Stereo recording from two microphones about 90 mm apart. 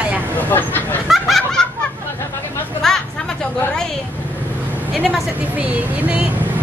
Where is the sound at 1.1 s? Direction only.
Centre (ahead or behind).